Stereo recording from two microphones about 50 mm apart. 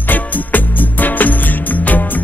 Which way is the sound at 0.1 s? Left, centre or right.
Left.